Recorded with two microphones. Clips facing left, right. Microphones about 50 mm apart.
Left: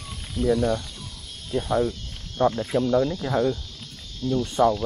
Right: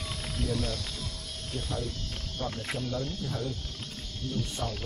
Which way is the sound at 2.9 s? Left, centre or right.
Left.